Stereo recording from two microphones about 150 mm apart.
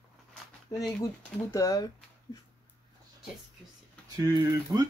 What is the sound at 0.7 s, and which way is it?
Speech, 25° left (ahead or behind).